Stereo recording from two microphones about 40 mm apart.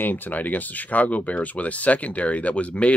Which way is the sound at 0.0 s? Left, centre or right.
Left.